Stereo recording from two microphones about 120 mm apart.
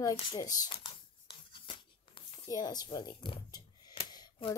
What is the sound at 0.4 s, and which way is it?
Speech, 30° left (ahead or behind).